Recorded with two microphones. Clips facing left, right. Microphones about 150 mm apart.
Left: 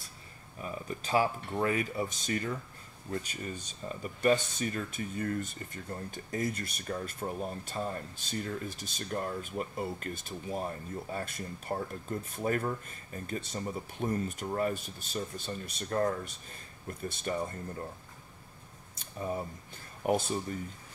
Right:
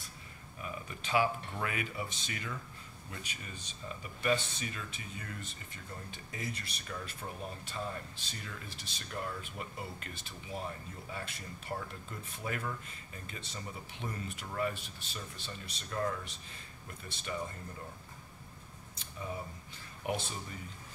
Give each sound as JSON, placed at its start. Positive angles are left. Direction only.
{"t": 0.6, "sound": "speech", "side_deg": 35}
{"t": 18.9, "sound": "a sound", "side_deg": 45}
{"t": 20.1, "sound": "speech", "side_deg": 45}